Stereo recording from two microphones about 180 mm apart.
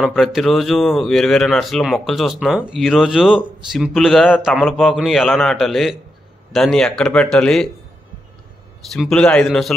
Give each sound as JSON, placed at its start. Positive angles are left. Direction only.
{"t": 0.0, "sound": "speech", "side_deg": 0}
{"t": 8.9, "sound": "speech", "side_deg": 5}